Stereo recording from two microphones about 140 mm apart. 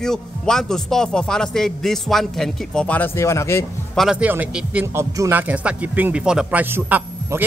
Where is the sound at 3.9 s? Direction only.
Centre (ahead or behind).